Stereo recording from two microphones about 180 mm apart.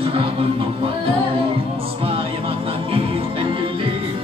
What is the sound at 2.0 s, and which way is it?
Music, 30° right (ahead or behind).